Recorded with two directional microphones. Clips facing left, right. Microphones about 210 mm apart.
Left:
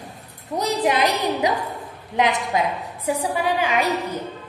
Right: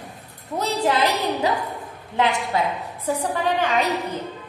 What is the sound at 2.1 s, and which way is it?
A woman's voice, 15° left (ahead or behind).